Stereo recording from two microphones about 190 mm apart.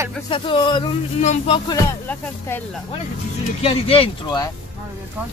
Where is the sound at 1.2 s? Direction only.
35° left (ahead or behind).